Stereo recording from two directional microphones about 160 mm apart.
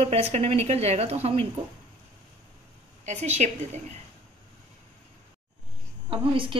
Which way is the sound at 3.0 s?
45° right (ahead or behind).